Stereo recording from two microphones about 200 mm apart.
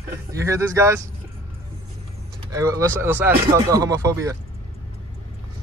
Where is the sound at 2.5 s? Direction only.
15° right (ahead or behind).